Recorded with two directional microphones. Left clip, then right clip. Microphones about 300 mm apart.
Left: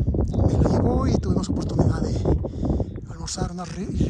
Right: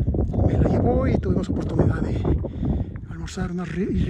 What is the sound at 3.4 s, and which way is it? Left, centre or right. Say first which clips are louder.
Speech: right 6 dB; centre.